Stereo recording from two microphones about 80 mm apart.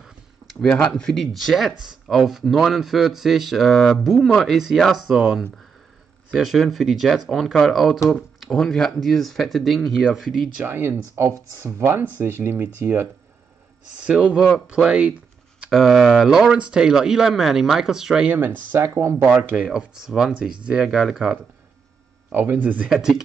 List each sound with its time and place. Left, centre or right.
0.7 s speech: centre
10.6 s speech: right
14.0 s speech: centre
15.6 s speech: centre
18.7 s speech: right
19.5 s speech: centre
22.3 s speech: right
22.8 s speech: centre